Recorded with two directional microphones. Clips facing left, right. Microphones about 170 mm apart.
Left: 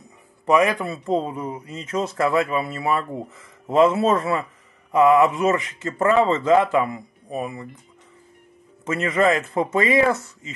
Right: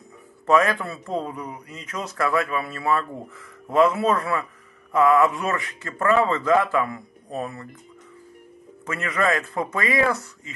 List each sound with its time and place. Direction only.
0.5 s a man's voice: 15° left (ahead or behind)
8.8 s a man's voice: 25° left (ahead or behind)